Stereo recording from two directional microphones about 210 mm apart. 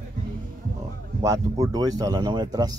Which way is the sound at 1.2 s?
15° right (ahead or behind).